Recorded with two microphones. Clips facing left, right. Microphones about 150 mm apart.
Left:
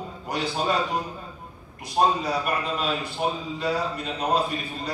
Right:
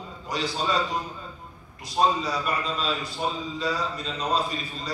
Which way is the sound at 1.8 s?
55° left (ahead or behind).